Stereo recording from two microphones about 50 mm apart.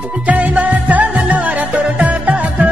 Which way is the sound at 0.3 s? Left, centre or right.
Right.